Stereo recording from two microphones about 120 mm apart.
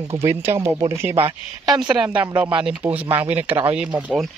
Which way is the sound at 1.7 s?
5° right (ahead or behind).